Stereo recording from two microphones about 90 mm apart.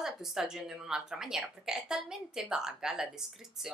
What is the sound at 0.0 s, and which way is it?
Speech, 5° right (ahead or behind).